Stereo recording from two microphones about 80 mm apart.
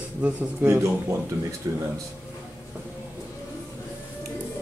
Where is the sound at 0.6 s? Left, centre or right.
Right.